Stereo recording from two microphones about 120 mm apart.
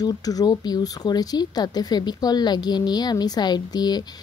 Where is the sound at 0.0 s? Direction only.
30° left (ahead or behind).